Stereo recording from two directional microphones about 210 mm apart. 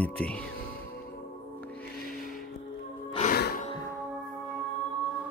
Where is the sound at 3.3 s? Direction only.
45° left (ahead or behind).